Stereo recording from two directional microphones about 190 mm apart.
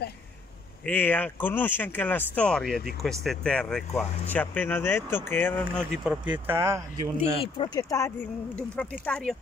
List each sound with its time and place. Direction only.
0.8 s speech: 10° left (ahead or behind)
5.8 s speech: 10° right (ahead or behind)
7.2 s speech: 30° left (ahead or behind)
8.9 s speech: 5° left (ahead or behind)